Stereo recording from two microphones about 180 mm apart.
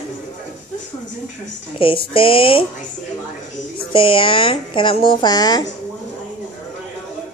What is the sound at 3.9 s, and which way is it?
A woman's voice, 30° left (ahead or behind).